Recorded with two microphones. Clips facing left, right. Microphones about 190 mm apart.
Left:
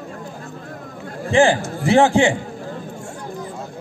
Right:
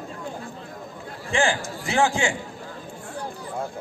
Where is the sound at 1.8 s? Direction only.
35° left (ahead or behind).